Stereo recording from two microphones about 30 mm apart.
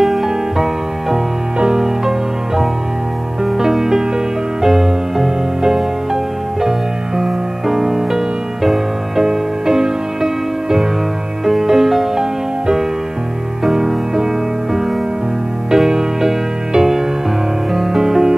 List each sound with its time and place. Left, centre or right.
0.0 s music: centre
1.8 s music: centre
7.2 s music: centre
13.7 s music: centre